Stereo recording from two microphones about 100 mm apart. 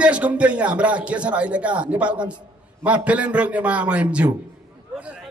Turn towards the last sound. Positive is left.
turn(degrees=-10)  # may be behind; listen again after turning